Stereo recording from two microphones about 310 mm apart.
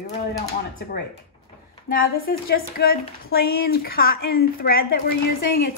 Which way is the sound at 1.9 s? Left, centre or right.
Left.